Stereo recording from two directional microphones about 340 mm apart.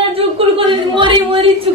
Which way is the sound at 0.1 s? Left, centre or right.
Centre.